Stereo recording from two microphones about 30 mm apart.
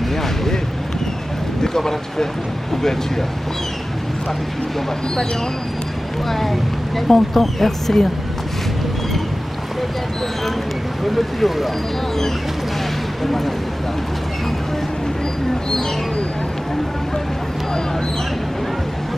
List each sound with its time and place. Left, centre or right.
0.1 s speech: centre
1.6 s speech: centre
6.2 s speech: centre
11.1 s speech: centre
13.2 s speech: centre